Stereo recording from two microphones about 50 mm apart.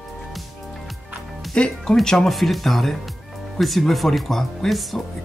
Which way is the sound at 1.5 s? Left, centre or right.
Centre.